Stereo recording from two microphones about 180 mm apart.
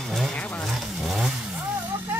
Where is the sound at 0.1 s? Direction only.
5° left (ahead or behind).